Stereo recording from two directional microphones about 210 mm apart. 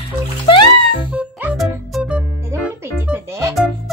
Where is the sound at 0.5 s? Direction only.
20° left (ahead or behind).